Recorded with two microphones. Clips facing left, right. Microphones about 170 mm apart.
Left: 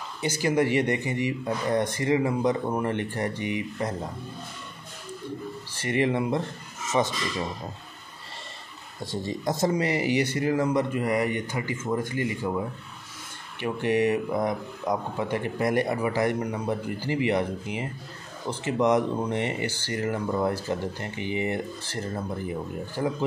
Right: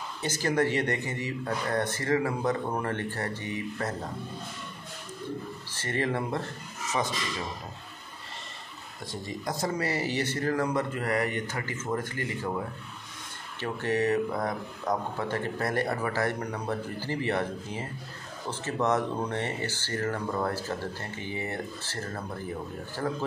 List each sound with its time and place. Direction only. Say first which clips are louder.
0.2 s speech: left 3 dB; 10° left (ahead or behind)
5.8 s speech: left 5 dB; 15° left (ahead or behind)
7.0 s a man's voice: left 6 dB; 25° left (ahead or behind)
9.0 s speech: left 6 dB; 30° left (ahead or behind)
13.6 s speech: left 4 dB; 15° left (ahead or behind)